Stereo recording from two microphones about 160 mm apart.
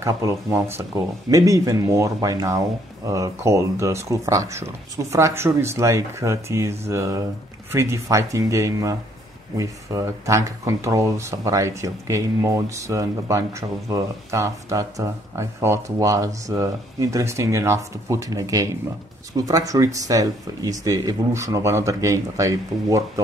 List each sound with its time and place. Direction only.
0.0 s speech: 15° right (ahead or behind)